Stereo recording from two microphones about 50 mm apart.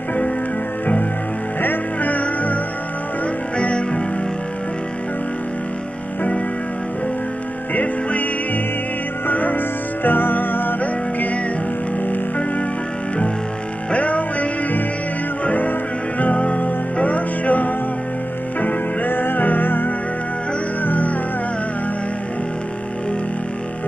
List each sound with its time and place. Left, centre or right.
1.6 s music: left
7.7 s music: left
9.3 s music: left
13.9 s music: left